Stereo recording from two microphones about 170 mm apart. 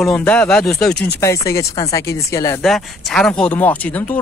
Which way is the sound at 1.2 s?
15° left (ahead or behind).